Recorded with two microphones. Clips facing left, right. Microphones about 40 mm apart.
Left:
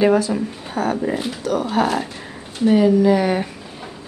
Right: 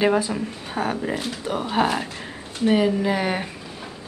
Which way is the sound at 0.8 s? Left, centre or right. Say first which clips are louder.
Left 4 dB; right.